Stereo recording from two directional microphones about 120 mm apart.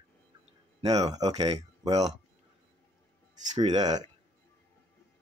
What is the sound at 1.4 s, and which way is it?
Speech, 55° right (ahead or behind).